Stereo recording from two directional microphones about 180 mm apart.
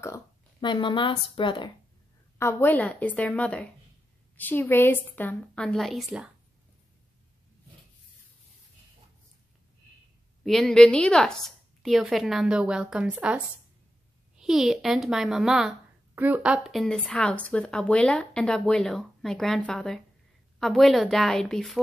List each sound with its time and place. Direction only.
0.0 s a woman's voice: 20° left (ahead or behind)
2.3 s a woman's voice: 10° left (ahead or behind)
10.4 s speech: centre (ahead or behind)